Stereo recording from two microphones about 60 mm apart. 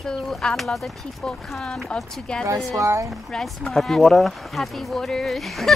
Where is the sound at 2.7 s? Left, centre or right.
Right.